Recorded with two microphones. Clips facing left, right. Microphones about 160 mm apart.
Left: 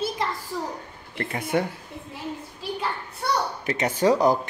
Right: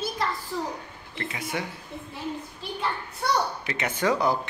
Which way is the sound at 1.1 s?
50° left (ahead or behind).